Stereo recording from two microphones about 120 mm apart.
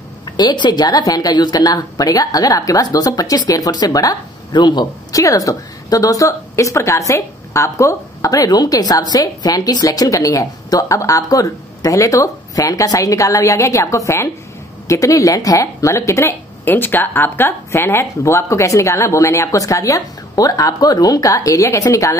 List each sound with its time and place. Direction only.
0.2 s a woman's voice: 35° left (ahead or behind)